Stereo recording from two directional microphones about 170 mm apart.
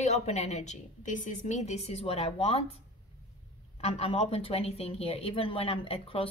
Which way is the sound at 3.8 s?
35° left (ahead or behind).